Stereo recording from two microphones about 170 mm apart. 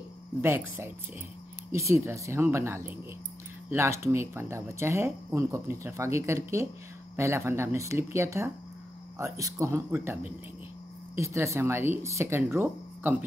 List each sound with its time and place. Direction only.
0.4 s speech: 15° right (ahead or behind)